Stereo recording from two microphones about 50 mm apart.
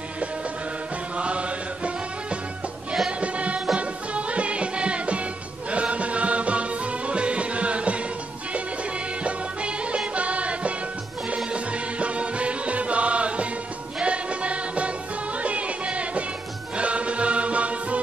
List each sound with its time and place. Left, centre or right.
1.1 s chant: right
3.1 s music: right
9.2 s music: right